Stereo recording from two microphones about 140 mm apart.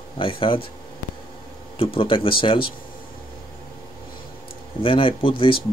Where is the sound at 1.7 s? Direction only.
40° left (ahead or behind).